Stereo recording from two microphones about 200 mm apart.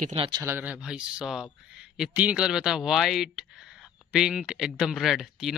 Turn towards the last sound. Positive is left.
turn(degrees=0)  # may be behind; listen again after turning